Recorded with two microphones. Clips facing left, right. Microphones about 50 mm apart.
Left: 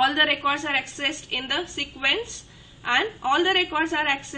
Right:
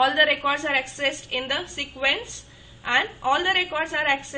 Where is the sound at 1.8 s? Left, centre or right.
Centre.